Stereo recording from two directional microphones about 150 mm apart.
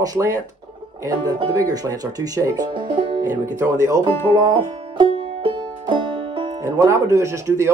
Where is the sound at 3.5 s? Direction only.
20° right (ahead or behind).